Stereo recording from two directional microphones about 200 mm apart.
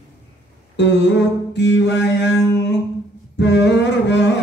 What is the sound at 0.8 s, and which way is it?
Mantra, 60° left (ahead or behind).